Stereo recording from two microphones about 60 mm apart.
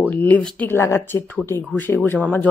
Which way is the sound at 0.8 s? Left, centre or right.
Left.